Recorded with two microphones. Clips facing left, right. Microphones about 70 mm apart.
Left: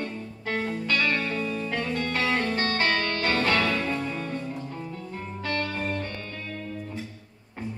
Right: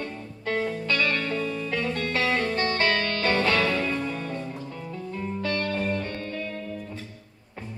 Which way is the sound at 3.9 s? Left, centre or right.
Centre.